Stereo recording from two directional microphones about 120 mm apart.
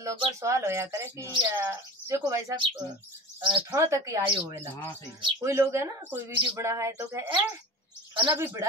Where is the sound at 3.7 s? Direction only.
25° right (ahead or behind).